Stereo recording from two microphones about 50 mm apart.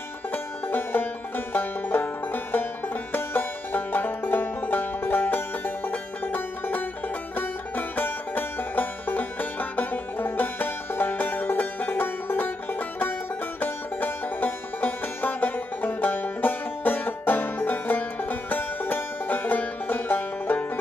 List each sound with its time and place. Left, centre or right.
0.3 s music: left
13.6 s music: left